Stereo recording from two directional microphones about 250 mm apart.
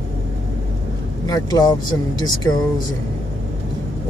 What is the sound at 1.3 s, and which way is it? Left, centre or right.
Speech, centre.